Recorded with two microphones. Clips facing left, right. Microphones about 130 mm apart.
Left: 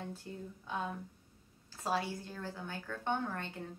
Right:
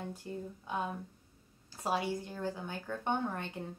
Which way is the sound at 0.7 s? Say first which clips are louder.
Right 2 dB; 15° right (ahead or behind).